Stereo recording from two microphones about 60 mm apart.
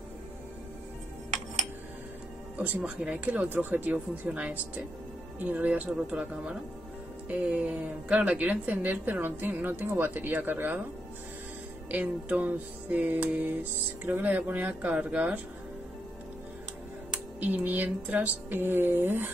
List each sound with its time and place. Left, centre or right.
2.8 s speech: centre
3.3 s speech: right
5.5 s a woman's voice: right
6.1 s speech: centre
7.2 s a woman's voice: right
11.9 s a woman's voice: right
17.4 s speech: right